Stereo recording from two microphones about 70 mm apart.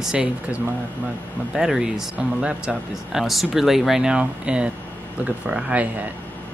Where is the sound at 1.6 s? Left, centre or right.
Centre.